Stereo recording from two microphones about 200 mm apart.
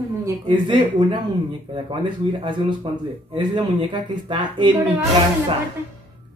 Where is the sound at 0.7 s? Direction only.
25° right (ahead or behind).